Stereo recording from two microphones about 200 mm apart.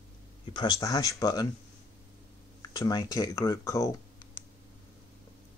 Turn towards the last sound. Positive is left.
turn(degrees=15)  # may be behind; listen again after turning